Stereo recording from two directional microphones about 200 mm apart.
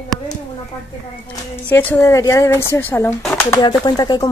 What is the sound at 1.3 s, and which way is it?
Speech, 10° left (ahead or behind).